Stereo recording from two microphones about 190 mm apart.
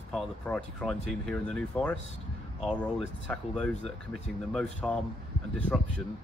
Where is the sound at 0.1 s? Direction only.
5° left (ahead or behind).